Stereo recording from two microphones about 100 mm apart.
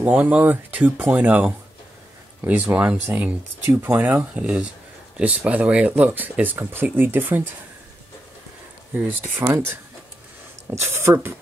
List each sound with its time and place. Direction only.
0.0 s speech: 15° right (ahead or behind)
9.4 s speech: 25° right (ahead or behind)